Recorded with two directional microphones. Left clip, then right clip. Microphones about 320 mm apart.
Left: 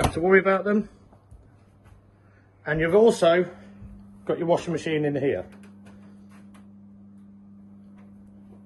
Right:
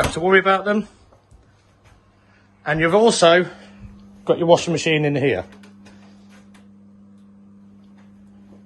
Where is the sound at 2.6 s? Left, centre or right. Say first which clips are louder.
Right 3 dB; centre.